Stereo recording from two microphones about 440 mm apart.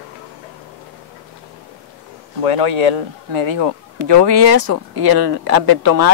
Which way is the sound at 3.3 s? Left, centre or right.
Right.